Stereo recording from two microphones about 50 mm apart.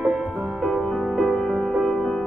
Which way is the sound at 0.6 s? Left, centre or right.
Centre.